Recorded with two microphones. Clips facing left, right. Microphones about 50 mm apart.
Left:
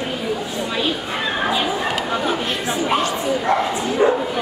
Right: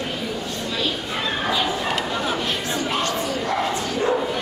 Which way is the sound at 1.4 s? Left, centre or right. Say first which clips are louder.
Left 3 dB; centre.